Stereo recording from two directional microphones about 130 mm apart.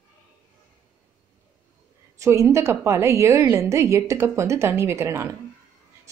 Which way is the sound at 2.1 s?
20° right (ahead or behind).